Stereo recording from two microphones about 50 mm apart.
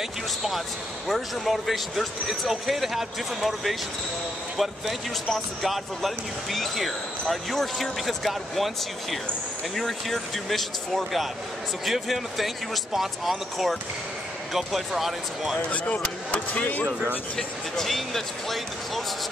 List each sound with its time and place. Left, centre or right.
1.0 s speech: centre
15.7 s speech: left
17.4 s speech: centre